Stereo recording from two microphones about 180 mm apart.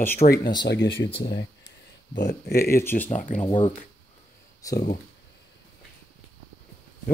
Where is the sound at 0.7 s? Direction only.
75° left (ahead or behind).